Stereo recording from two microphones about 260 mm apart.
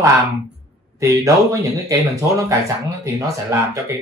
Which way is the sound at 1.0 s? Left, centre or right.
Centre.